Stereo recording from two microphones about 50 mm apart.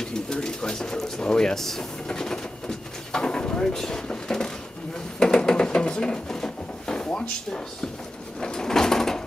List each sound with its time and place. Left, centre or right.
0.0 s speech: centre
3.1 s a sound: centre
7.1 s speech: centre
8.4 s door: centre